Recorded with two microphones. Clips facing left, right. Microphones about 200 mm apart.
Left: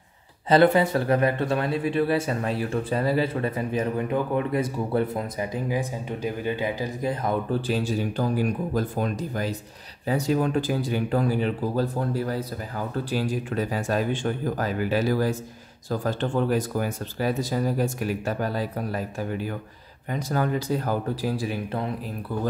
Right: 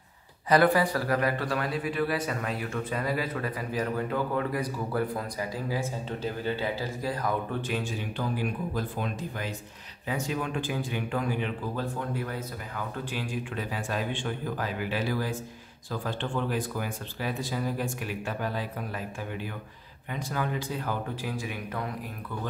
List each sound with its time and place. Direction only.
0.5 s a man's voice: 25° left (ahead or behind)
7.6 s speech: 35° left (ahead or behind)